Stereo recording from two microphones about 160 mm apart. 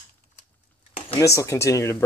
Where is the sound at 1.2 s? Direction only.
20° left (ahead or behind).